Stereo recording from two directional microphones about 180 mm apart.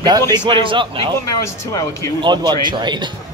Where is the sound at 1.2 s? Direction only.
20° left (ahead or behind).